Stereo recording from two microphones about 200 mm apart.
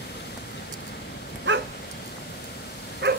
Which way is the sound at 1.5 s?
65° right (ahead or behind).